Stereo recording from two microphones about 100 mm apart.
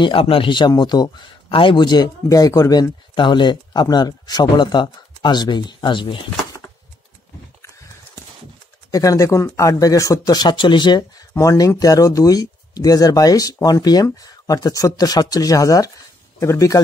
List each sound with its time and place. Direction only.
0.0 s speech: 60° left (ahead or behind)
2.2 s speech: 35° left (ahead or behind); by 6.6 s 50° left (ahead or behind)
8.9 s speech: 35° left (ahead or behind)